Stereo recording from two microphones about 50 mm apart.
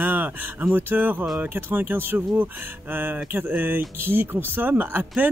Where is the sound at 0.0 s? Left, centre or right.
Right.